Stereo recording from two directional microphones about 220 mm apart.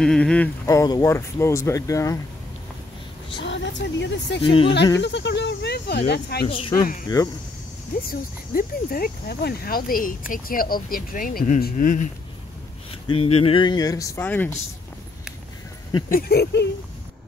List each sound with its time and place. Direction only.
0.0 s a sound: 5° left (ahead or behind)
0.7 s speech: 15° left (ahead or behind)
3.3 s speech: 55° left (ahead or behind)
4.4 s speech: 25° left (ahead or behind)
5.0 s speech: 50° left (ahead or behind)
6.4 s speech: 25° left (ahead or behind)
8.1 s speech: 40° left (ahead or behind)
13.1 s speech: 25° left (ahead or behind); by 14.6 s 10° left (ahead or behind)
16.1 s speech: 45° left (ahead or behind)